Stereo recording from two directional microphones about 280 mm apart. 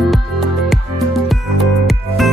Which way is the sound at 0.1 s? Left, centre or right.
Centre.